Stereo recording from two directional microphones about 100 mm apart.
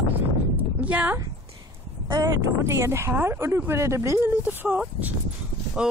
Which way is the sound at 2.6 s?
30° right (ahead or behind).